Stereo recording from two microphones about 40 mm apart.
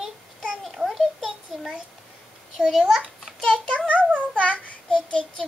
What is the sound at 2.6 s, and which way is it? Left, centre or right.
Speech, right.